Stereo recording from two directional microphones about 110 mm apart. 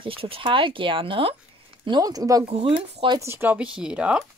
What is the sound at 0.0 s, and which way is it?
Speech, 55° right (ahead or behind).